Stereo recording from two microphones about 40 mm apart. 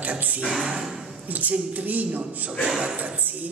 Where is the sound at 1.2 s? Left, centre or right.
Right.